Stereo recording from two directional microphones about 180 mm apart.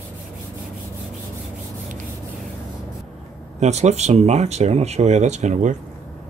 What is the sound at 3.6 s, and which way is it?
Speech, 40° right (ahead or behind).